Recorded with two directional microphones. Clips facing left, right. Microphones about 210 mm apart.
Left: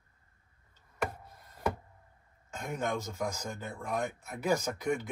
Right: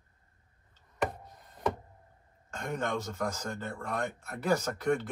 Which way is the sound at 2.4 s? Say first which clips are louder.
Right 1 dB; 5° left (ahead or behind).